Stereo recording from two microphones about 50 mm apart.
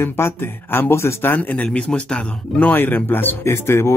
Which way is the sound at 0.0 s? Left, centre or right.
Left.